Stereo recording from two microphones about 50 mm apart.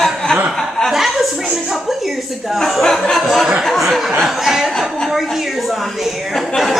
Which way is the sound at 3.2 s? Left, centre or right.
Centre.